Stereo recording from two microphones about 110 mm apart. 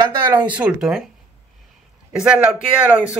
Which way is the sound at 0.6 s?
10° right (ahead or behind).